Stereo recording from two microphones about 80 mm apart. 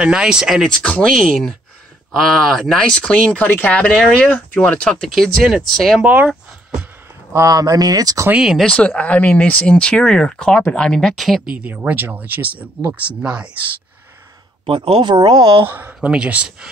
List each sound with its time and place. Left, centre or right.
0.0 s speech: centre
0.8 s speech: centre
5.1 s speech: centre
6.0 s a sound: centre
7.3 s speech: right
8.4 s speech: centre
8.6 s speech: centre
11.5 s speech: centre
14.7 s speech: right
15.6 s speech: right
16.1 s speech: centre